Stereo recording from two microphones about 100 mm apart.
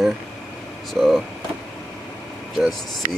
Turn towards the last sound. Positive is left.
turn(degrees=0)  # may be behind; listen again after turning